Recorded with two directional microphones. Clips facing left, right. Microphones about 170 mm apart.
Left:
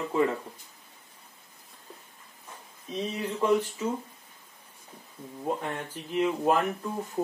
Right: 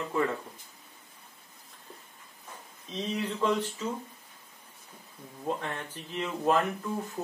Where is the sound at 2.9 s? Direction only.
10° left (ahead or behind).